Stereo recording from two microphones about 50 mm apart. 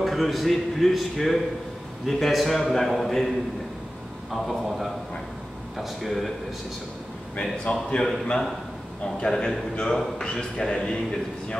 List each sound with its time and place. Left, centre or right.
0.0 s a man's voice: centre
4.3 s a man's voice: centre
7.3 s a man's voice: centre
9.2 s a man's voice: centre